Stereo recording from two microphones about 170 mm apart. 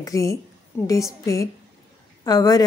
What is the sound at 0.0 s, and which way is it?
A woman's voice, 20° left (ahead or behind).